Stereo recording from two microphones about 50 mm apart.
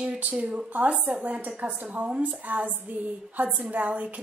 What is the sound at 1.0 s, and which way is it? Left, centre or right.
A woman's voice, right.